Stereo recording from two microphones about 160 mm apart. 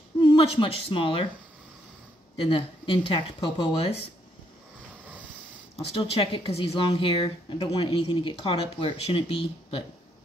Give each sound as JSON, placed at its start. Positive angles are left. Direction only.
{"t": 0.2, "sound": "a woman's voice", "side_deg": 35}
{"t": 2.3, "sound": "speech", "side_deg": 35}
{"t": 5.8, "sound": "speech", "side_deg": 35}